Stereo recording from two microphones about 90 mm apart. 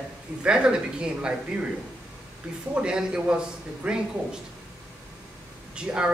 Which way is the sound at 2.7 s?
10° right (ahead or behind).